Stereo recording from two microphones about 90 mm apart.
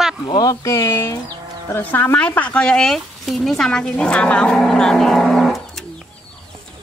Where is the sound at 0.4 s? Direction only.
40° left (ahead or behind).